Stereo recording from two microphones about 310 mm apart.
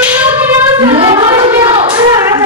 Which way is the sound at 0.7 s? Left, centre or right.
Centre.